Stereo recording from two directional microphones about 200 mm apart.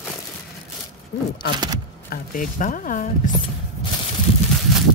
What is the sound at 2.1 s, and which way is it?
Speech, 45° left (ahead or behind).